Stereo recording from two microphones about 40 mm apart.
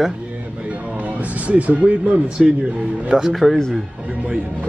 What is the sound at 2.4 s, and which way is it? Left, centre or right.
Speech, centre.